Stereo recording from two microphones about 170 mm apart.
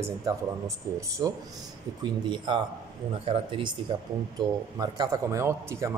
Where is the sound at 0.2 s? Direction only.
20° right (ahead or behind).